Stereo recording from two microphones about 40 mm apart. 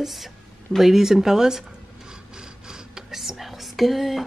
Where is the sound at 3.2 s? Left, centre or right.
Centre.